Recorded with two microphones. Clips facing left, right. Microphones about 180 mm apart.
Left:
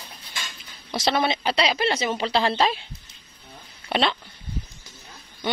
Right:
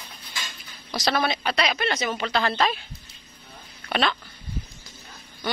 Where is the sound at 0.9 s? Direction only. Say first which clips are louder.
Left 2 dB; 25° left (ahead or behind).